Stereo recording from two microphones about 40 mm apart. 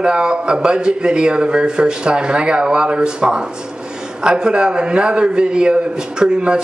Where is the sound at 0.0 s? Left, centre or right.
Right.